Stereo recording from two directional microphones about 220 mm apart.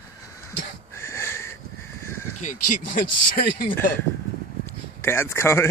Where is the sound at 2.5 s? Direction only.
90° left.